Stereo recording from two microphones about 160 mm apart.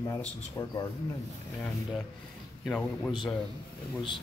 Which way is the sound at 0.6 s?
20° left (ahead or behind).